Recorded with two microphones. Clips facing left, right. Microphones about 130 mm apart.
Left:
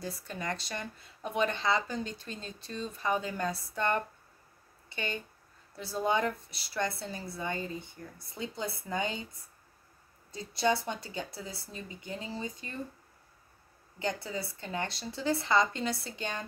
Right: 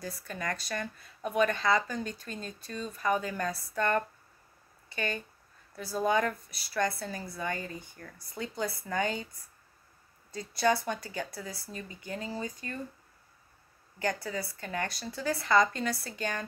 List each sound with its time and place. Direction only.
0.0 s a woman's voice: 20° left (ahead or behind)
10.3 s a woman's voice: 20° left (ahead or behind)
13.9 s a woman's voice: 20° left (ahead or behind)